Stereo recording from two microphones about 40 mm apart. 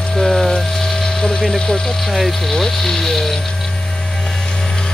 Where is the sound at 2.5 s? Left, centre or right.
Centre.